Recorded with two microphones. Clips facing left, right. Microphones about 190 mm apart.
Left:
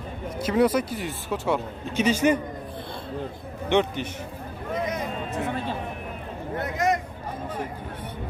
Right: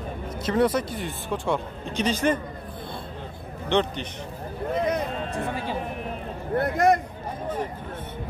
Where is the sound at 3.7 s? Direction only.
10° left (ahead or behind).